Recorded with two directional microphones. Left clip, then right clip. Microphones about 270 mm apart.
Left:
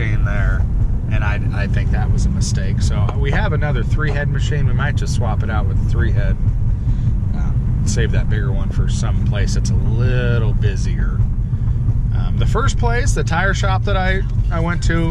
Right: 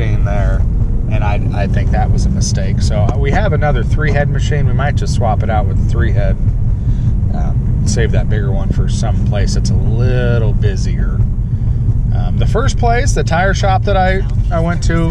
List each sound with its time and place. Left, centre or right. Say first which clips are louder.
1.2 s speech: right 5 dB; centre
7.8 s speech: right 5 dB; centre
12.4 s speech: right 4 dB; centre